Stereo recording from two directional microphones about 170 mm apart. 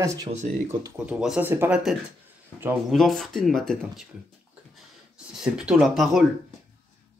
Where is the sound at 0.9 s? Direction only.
5° right (ahead or behind).